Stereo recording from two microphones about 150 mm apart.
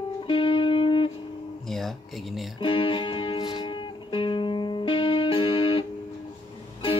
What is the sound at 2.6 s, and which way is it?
Music, 35° left (ahead or behind).